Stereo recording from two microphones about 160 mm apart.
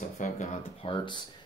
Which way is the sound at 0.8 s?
30° left (ahead or behind).